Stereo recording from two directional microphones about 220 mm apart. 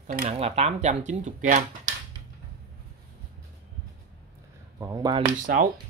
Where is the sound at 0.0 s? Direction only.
30° right (ahead or behind).